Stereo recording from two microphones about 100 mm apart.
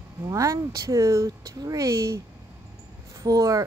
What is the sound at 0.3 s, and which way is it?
A woman's voice, 35° right (ahead or behind).